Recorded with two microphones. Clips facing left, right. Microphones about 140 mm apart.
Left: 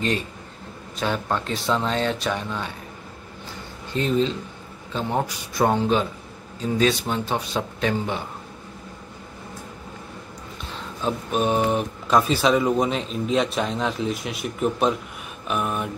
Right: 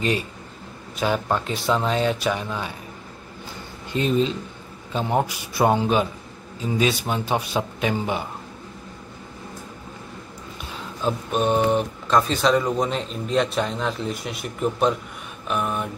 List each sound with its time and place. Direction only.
0.9 s speech: 5° right (ahead or behind)
3.9 s speech: 15° right (ahead or behind)
11.0 s speech: centre (ahead or behind)